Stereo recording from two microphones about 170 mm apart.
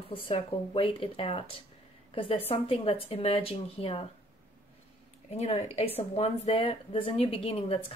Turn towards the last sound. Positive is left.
turn(degrees=35)  # may be behind; listen again after turning